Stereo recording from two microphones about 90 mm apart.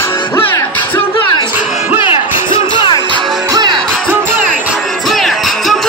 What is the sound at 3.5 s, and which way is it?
Music, 50° right (ahead or behind).